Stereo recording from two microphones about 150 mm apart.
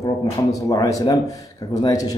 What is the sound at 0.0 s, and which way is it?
A man's voice, 20° left (ahead or behind).